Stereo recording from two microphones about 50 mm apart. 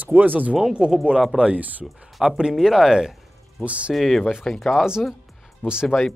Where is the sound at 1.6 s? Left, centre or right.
Right.